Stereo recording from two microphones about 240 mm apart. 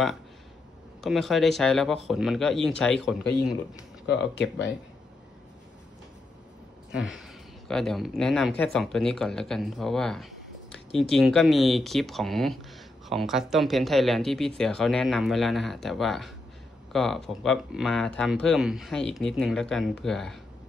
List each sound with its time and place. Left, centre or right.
1.0 s speech: centre
4.0 s speech: left
6.9 s speech: centre